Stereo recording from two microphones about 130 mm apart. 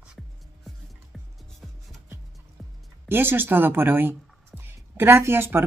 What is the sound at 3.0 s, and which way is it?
Speech, 15° right (ahead or behind).